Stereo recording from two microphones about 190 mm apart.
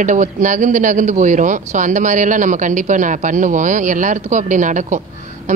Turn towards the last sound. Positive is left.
turn(degrees=-40)  # may be behind; listen again after turning